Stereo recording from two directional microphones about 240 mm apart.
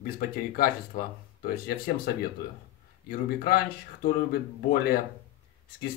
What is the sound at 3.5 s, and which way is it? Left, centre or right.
Speech, left.